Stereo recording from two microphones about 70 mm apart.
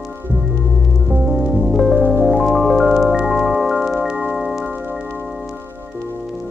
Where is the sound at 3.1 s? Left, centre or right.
Centre.